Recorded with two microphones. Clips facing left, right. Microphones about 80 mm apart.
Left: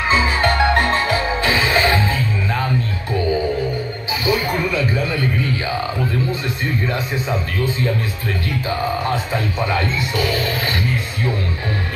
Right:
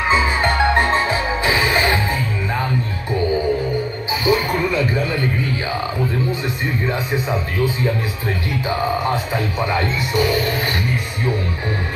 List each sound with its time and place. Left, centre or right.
0.1 s music: centre
4.1 s music: right
6.6 s speech: centre